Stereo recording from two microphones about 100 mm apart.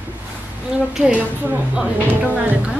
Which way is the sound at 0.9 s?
10° right (ahead or behind).